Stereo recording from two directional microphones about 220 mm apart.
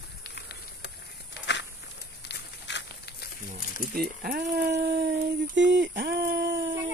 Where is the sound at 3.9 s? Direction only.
45° right (ahead or behind).